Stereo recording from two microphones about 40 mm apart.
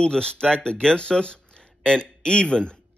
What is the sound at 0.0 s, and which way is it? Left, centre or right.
A man's voice, left.